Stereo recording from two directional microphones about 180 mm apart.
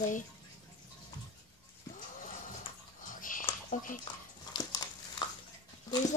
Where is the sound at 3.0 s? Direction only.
50° left (ahead or behind).